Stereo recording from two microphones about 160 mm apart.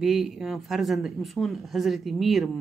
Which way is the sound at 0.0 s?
Centre (ahead or behind).